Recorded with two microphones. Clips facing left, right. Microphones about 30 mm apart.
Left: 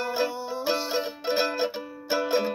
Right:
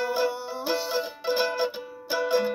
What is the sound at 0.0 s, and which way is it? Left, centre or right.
Music, centre.